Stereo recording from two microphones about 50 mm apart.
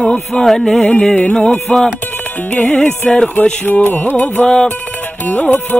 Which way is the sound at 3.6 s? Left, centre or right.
Left.